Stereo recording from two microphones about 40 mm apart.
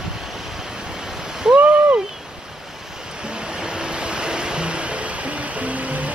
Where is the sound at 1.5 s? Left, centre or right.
Right.